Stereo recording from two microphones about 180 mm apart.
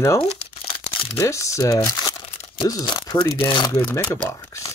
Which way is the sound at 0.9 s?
30° left (ahead or behind).